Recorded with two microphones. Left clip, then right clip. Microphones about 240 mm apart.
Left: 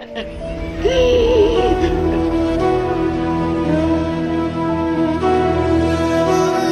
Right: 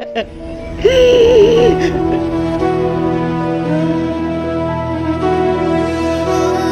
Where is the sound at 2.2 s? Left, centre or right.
Centre.